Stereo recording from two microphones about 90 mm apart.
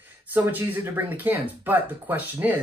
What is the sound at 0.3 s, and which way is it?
Speech, 20° right (ahead or behind).